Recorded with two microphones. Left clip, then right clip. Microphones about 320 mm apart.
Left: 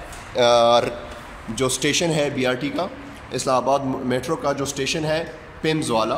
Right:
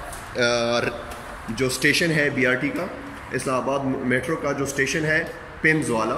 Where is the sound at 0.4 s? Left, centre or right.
Left.